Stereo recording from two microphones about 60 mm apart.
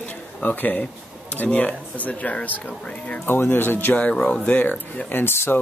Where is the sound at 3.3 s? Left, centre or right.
Left.